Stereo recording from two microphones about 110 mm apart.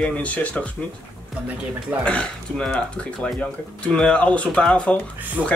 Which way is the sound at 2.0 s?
10° left (ahead or behind).